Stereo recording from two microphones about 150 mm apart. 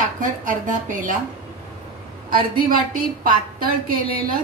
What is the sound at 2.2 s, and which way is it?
A woman's voice, 70° right (ahead or behind).